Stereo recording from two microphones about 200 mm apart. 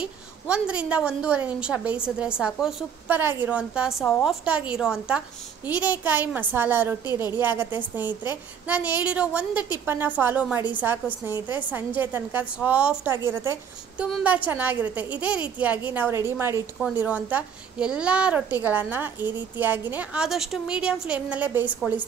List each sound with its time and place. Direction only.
0.0 s a woman's voice: 5° right (ahead or behind)